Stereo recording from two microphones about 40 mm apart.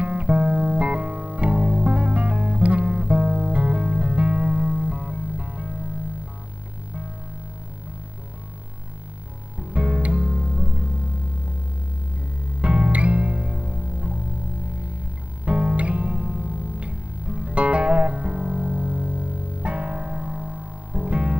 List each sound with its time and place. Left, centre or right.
0.0 s music: right
9.6 s music: right
12.6 s music: right
15.4 s music: right